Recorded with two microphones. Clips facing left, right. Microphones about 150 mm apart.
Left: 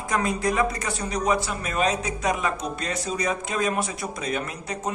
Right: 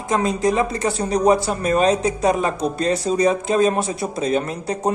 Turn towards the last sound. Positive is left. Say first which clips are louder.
# right 8 dB
turn(degrees=-30)  # may be behind; listen again after turning